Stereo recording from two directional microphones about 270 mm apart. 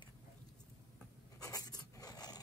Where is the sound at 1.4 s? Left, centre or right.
Centre.